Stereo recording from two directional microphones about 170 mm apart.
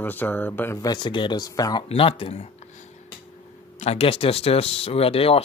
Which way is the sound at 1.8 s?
35° left (ahead or behind).